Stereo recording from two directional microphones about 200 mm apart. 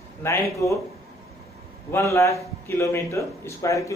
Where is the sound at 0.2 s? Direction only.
15° left (ahead or behind).